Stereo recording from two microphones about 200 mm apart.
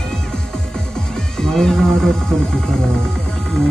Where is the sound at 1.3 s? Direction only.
5° left (ahead or behind).